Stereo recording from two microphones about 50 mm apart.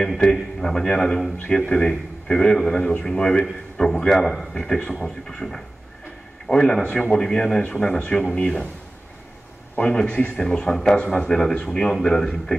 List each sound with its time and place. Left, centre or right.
0.2 s a man's voice: centre
4.6 s speech: centre
9.8 s speech: centre